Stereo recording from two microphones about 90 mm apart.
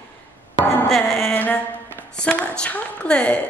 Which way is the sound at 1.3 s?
20° left (ahead or behind).